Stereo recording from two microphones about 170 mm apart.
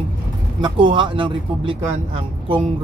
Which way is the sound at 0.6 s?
30° right (ahead or behind).